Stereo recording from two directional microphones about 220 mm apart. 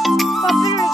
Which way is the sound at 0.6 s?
15° left (ahead or behind).